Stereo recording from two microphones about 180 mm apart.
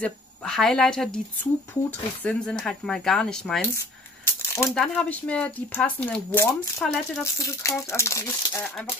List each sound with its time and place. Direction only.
0.0 s speech: 5° left (ahead or behind)
3.7 s a sound: 15° left (ahead or behind)
4.7 s speech: 5° left (ahead or behind)